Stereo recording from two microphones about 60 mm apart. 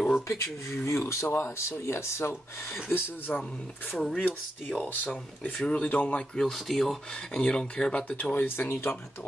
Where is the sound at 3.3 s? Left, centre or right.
Centre.